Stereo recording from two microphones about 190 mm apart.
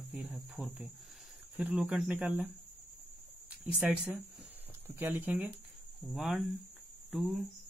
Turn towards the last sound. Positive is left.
turn(degrees=0)  # may be behind; listen again after turning